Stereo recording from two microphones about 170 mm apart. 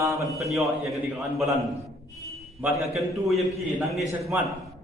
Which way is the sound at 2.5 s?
5° right (ahead or behind).